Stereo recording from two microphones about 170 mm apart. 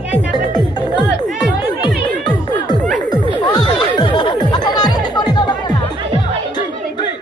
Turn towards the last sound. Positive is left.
turn(degrees=25)  # may be behind; listen again after turning